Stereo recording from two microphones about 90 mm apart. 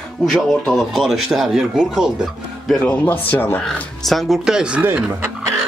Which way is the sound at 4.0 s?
Centre (ahead or behind).